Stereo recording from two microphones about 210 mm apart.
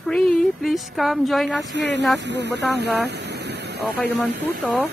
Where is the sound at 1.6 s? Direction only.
60° right (ahead or behind).